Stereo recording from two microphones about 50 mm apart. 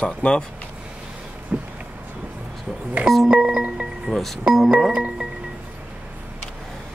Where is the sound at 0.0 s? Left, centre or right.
Left.